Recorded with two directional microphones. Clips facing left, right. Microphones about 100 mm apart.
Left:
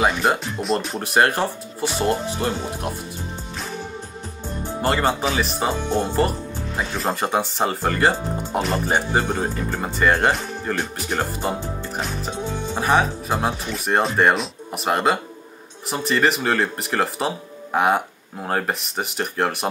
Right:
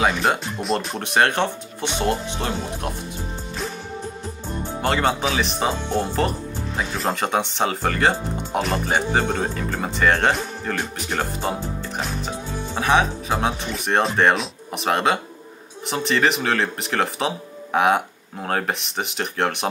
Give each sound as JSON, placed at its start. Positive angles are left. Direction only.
{"t": 0.0, "sound": "speech", "side_deg": 0}
{"t": 4.8, "sound": "speech", "side_deg": 0}
{"t": 5.9, "sound": "speech", "side_deg": 15}
{"t": 6.8, "sound": "speech", "side_deg": 0}
{"t": 9.3, "sound": "speech", "side_deg": 15}
{"t": 12.3, "sound": "music", "side_deg": 20}
{"t": 12.8, "sound": "speech", "side_deg": 0}